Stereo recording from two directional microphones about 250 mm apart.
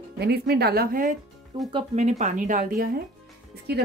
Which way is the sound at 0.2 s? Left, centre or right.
Right.